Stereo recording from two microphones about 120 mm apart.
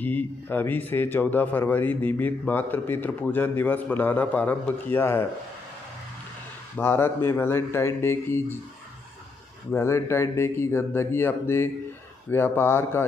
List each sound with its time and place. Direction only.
0.0 s speech: 15° left (ahead or behind)
6.8 s speech: 20° left (ahead or behind)
9.7 s speech: 20° left (ahead or behind)